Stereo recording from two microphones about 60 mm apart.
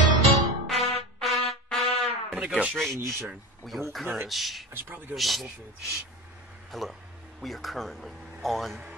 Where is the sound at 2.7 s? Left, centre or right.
Centre.